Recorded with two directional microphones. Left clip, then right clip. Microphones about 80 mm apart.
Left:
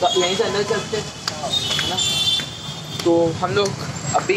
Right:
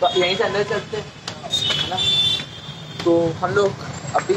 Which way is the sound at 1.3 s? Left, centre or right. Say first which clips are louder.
Even; right.